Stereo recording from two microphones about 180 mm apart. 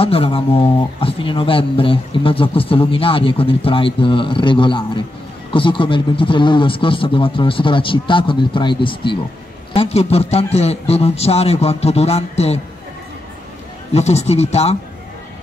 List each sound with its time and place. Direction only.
0.0 s speech: 30° left (ahead or behind)
13.9 s speech: 35° left (ahead or behind)